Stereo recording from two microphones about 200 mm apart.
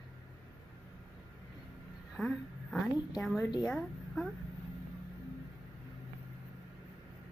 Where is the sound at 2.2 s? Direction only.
Centre (ahead or behind).